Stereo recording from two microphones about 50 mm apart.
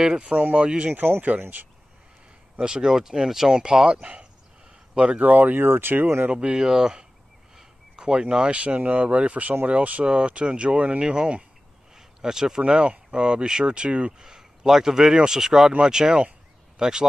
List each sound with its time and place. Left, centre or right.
0.0 s speech: centre
0.3 s speech: right
0.9 s speech: right
2.6 s speech: centre
5.2 s speech: right
6.3 s speech: centre
11.9 s a sound: centre
12.6 s speech: right; by 15.7 s centre
15.8 s a sound: centre